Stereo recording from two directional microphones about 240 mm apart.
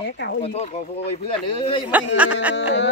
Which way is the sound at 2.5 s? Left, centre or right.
Left.